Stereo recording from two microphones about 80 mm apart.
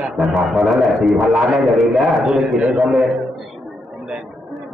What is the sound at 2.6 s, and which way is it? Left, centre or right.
Speech, centre.